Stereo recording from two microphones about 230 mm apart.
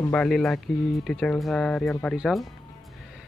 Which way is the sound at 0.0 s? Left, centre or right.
Centre.